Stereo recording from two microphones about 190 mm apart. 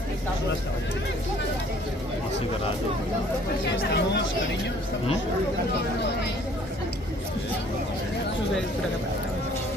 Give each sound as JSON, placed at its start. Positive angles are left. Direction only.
{"t": 3.6, "sound": "speech", "side_deg": 65}